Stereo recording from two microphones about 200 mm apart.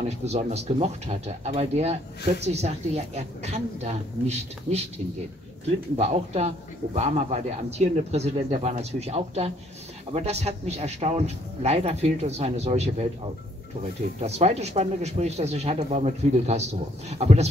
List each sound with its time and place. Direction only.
0.0 s speech: 35° right (ahead or behind)
5.9 s speech: 35° right (ahead or behind)
14.2 s speech: 35° right (ahead or behind)